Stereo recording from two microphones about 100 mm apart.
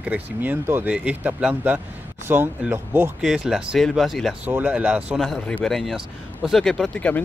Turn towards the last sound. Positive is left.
turn(degrees=15)  # may be behind; listen again after turning